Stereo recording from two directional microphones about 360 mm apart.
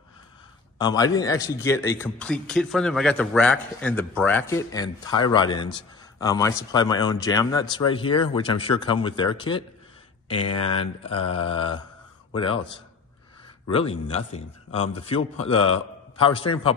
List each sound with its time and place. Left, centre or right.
0.7 s a man's voice: centre
13.7 s a man's voice: centre